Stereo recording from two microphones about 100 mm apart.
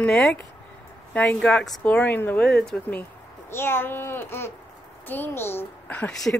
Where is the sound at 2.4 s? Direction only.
5° left (ahead or behind).